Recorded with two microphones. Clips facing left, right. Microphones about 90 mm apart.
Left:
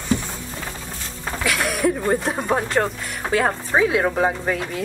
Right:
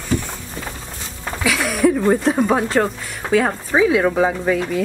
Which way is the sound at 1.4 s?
Centre (ahead or behind).